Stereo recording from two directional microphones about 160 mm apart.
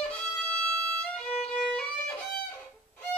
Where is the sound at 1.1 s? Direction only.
5° left (ahead or behind).